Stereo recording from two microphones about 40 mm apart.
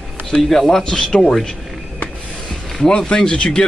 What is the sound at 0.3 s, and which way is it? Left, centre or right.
Speech, centre.